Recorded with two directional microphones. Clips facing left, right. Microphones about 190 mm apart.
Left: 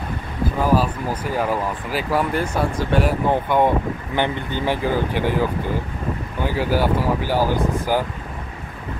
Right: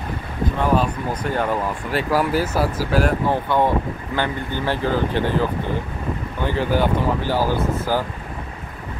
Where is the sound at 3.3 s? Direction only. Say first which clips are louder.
Left 1 dB; 15° left (ahead or behind).